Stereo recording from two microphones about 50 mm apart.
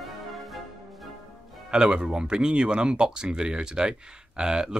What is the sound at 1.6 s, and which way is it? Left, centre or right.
Speech, centre.